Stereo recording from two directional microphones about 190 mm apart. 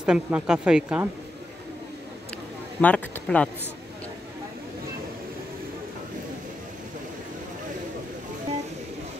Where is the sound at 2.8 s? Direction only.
5° left (ahead or behind).